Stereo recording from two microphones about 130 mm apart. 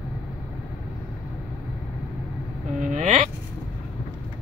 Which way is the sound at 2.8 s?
70° right (ahead or behind).